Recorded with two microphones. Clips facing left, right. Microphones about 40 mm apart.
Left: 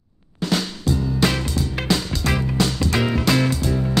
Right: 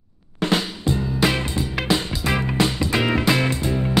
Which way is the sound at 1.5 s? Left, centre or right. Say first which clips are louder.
Even; centre.